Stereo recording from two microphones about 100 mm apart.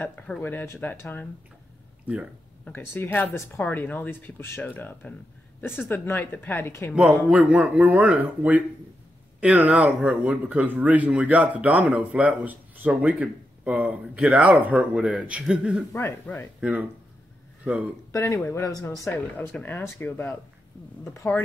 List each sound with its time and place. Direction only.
0.4 s a woman's voice: 20° left (ahead or behind)
2.6 s a woman's voice: 20° left (ahead or behind)
7.2 s speech: 15° right (ahead or behind)
15.9 s a woman's voice: 25° left (ahead or behind)
18.1 s speech: 30° left (ahead or behind)
19.3 s a woman's voice: 15° left (ahead or behind)